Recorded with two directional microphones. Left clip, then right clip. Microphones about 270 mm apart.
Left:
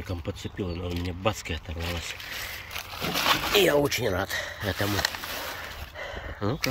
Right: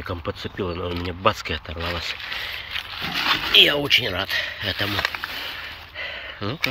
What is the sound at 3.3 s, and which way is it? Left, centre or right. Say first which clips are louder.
Speech: right 6 dB; left.